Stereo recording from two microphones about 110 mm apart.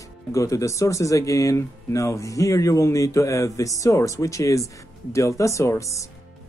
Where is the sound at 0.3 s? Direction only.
30° left (ahead or behind).